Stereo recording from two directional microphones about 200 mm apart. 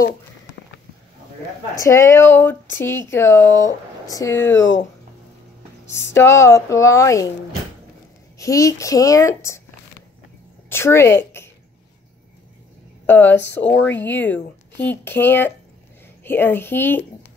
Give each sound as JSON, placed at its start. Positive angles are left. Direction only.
{"t": 1.8, "sound": "speech", "side_deg": 15}
{"t": 5.9, "sound": "speech", "side_deg": 15}
{"t": 8.4, "sound": "speech", "side_deg": 15}
{"t": 10.7, "sound": "speech", "side_deg": 10}
{"t": 13.0, "sound": "speech", "side_deg": 10}
{"t": 13.9, "sound": "speech", "side_deg": 65}
{"t": 14.2, "sound": "speech", "side_deg": 10}